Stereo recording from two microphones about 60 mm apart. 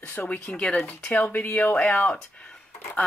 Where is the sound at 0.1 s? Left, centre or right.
Left.